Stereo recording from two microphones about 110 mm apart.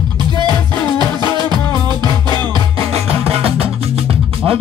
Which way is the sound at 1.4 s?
40° right (ahead or behind).